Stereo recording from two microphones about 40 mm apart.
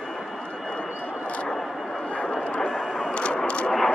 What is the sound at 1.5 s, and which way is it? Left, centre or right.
Vehicle, centre.